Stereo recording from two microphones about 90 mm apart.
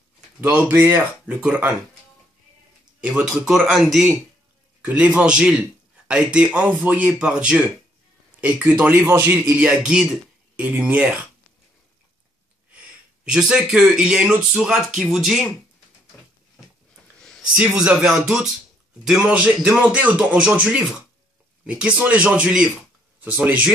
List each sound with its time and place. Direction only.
0.4 s a man's voice: 10° right (ahead or behind)
0.7 s a man's voice: 25° right (ahead or behind)
3.0 s speech: 10° right (ahead or behind)
4.8 s a man's voice: 15° right (ahead or behind)
13.2 s a man's voice: 10° right (ahead or behind)
17.6 s a man's voice: 10° right (ahead or behind)